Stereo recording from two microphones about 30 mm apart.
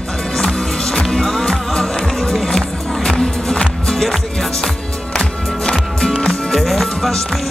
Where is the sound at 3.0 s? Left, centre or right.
Left.